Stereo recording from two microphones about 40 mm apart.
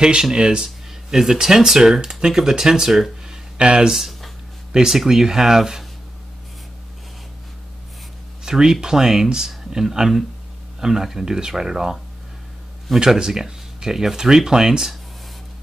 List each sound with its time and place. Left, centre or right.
0.0 s speech: centre
3.5 s speech: right
3.9 s speech: centre
8.5 s speech: centre
13.0 s speech: centre